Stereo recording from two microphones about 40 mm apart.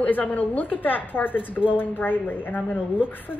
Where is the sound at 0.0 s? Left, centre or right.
Left.